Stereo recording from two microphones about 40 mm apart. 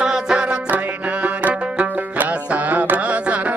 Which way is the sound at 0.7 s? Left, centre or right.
Right.